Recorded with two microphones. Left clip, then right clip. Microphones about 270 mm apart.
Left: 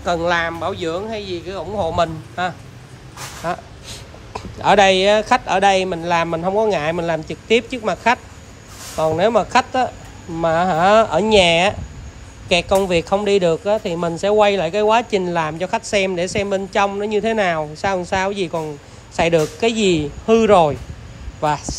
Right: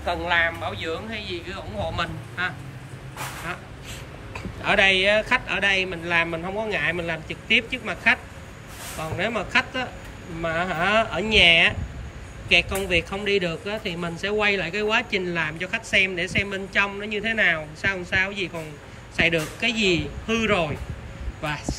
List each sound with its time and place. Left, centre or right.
0.7 s speech: centre
4.6 s speech: centre
9.2 s speech: centre